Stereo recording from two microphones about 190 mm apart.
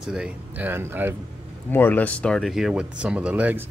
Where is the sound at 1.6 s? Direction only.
10° left (ahead or behind); by 3.6 s 5° right (ahead or behind).